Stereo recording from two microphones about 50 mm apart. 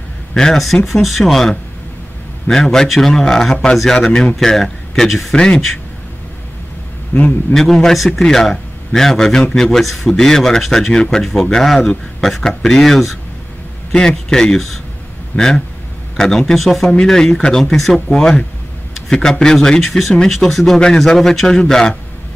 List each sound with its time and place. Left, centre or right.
0.3 s speech: centre
0.8 s a man's voice: centre
5.3 s speech: centre
7.5 s a man's voice: centre
13.9 s a man's voice: centre
16.9 s a man's voice: centre